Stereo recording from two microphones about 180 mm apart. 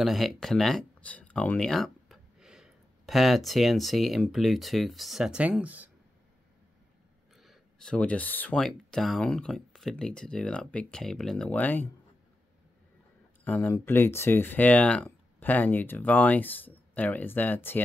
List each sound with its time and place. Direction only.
0.0 s speech: centre (ahead or behind)
7.3 s speech: centre (ahead or behind)
13.4 s speech: 10° left (ahead or behind)